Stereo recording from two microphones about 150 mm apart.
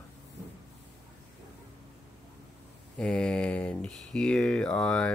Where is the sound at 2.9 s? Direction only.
5° left (ahead or behind).